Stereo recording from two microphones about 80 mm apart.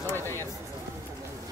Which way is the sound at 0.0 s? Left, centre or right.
Left.